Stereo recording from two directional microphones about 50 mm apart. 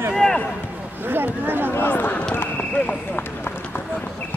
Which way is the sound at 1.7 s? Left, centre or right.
Left.